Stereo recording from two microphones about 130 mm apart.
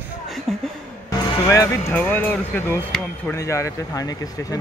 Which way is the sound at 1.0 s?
25° left (ahead or behind).